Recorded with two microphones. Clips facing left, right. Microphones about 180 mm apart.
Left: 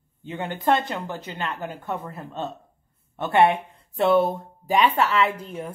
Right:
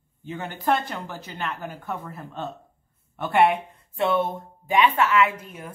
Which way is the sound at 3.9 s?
35° left (ahead or behind).